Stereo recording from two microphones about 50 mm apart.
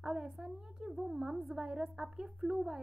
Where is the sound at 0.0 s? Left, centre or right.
Centre.